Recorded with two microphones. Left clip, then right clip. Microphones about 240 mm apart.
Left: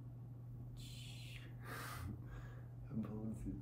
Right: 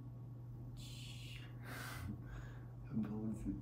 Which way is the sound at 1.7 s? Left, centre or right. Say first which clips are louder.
Even; centre.